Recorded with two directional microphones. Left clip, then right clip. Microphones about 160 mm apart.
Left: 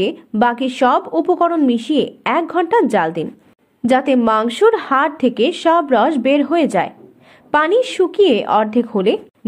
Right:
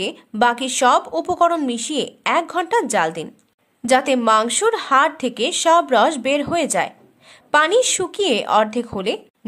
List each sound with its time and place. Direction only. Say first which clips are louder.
0.0 s a woman's voice: left 2 dB; 20° right (ahead or behind)